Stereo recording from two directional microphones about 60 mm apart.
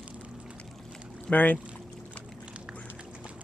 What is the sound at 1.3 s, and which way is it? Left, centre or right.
Speech, left.